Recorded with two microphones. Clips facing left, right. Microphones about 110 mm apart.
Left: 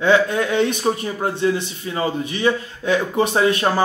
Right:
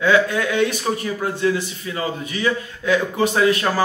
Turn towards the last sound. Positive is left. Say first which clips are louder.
# left 1 dB
turn(degrees=25)  # may be behind; listen again after turning